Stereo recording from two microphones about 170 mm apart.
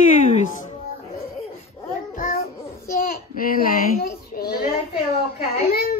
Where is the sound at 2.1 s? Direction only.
55° left (ahead or behind).